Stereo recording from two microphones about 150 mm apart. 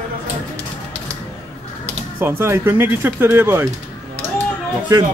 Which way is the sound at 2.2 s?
15° right (ahead or behind).